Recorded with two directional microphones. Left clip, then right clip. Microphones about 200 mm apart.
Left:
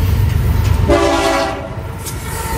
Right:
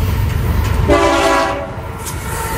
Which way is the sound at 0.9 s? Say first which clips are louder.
Right 1 dB; 25° right (ahead or behind).